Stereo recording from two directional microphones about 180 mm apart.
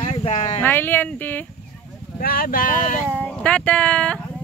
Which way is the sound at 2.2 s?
55° left (ahead or behind).